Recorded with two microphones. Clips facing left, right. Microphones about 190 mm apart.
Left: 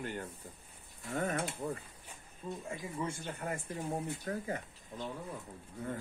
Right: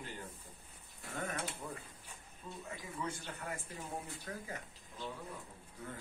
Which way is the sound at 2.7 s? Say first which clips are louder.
Left 3 dB; 25° left (ahead or behind).